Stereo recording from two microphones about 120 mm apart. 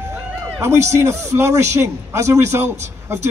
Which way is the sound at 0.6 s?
25° right (ahead or behind).